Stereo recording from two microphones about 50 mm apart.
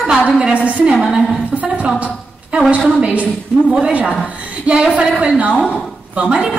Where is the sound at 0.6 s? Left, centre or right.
Right.